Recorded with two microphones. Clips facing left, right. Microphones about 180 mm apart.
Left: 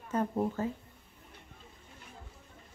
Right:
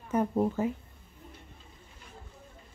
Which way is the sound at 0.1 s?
15° right (ahead or behind).